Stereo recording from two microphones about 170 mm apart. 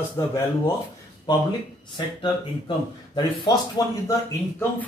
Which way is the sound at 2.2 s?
25° left (ahead or behind).